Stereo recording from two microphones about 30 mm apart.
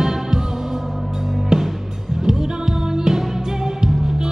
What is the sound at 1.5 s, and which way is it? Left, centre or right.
Music, right.